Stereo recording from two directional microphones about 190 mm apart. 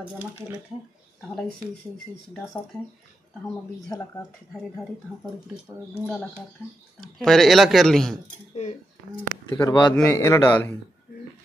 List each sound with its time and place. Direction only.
0.0 s speech: 10° right (ahead or behind)
3.9 s a man's voice: 15° left (ahead or behind)
7.0 s speech: 5° left (ahead or behind)
8.5 s speech: 35° left (ahead or behind)
9.5 s a man's voice: 25° left (ahead or behind)